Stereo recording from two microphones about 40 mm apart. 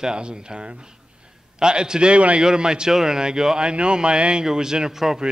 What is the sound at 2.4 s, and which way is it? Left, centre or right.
A man's voice, centre.